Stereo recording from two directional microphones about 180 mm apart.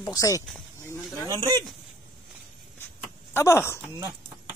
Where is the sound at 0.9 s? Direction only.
15° left (ahead or behind).